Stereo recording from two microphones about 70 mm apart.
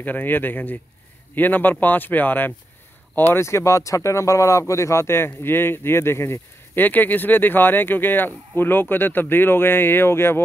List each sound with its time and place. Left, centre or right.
0.0 s a man's voice: left
3.4 s speech: left